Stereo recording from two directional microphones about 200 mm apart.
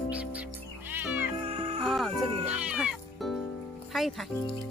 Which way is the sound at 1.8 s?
Centre (ahead or behind).